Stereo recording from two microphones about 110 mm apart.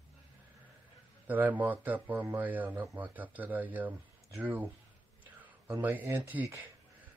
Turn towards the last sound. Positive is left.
turn(degrees=-20)  # may be behind; listen again after turning